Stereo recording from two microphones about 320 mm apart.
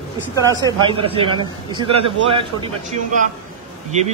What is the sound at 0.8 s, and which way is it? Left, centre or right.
A man's voice, centre.